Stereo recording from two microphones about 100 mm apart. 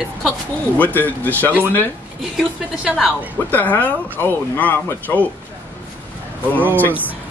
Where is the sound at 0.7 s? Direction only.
15° left (ahead or behind).